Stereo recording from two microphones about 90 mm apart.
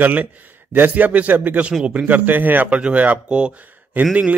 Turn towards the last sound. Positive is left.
turn(degrees=-15)  # may be behind; listen again after turning